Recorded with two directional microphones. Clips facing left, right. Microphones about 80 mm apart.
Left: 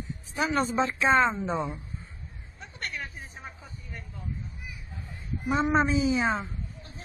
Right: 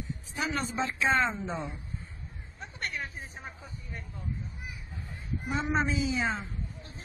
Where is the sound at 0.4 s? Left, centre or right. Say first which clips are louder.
Left 6 dB; left.